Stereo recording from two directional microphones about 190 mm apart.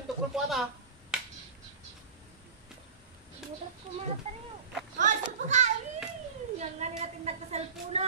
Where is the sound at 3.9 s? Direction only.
40° right (ahead or behind).